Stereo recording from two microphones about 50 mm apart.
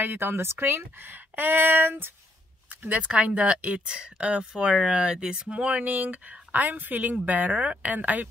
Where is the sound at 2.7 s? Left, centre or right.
Right.